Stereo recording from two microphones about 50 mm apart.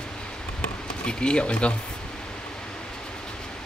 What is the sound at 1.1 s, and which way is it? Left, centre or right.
Cutlery, centre.